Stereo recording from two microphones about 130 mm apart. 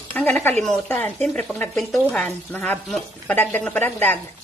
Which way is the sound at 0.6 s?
5° left (ahead or behind).